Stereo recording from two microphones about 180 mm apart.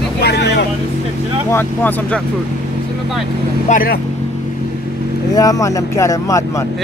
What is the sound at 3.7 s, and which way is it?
Speech, 55° left (ahead or behind).